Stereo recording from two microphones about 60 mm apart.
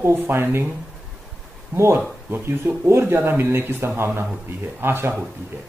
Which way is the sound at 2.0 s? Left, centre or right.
Right.